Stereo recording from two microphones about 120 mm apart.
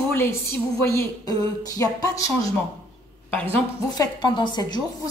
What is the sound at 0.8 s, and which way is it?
Speech, 20° left (ahead or behind).